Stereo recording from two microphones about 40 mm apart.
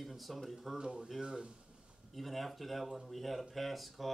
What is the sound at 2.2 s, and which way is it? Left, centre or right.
Speech, centre.